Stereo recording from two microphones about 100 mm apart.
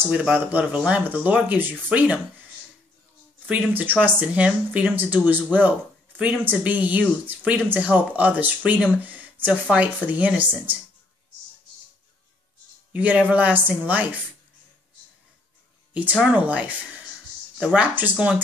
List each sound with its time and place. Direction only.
0.0 s speech: 10° right (ahead or behind)
3.7 s speech: 20° right (ahead or behind)
12.9 s speech: 15° right (ahead or behind)
15.9 s speech: 15° right (ahead or behind)